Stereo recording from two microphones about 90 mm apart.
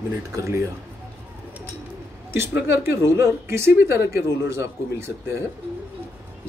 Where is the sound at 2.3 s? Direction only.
25° right (ahead or behind).